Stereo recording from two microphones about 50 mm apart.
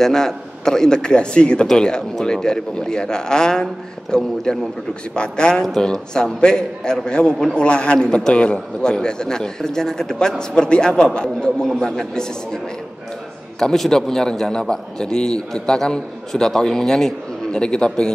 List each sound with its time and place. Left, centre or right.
0.0 s a man's voice: centre
13.6 s a man's voice: centre